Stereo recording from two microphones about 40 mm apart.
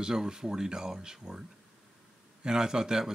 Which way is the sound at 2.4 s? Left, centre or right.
Centre.